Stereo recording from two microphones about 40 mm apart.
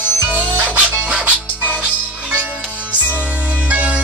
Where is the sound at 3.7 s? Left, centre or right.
Right.